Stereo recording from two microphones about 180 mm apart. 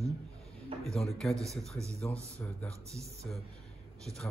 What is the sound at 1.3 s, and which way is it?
Speech, 15° right (ahead or behind).